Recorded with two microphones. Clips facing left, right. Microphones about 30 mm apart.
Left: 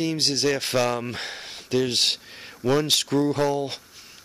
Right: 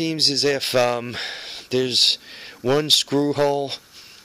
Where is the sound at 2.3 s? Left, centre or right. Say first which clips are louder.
Right 3 dB; right.